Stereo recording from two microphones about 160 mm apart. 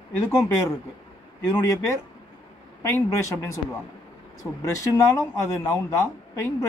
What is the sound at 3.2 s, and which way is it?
Speech, 20° left (ahead or behind).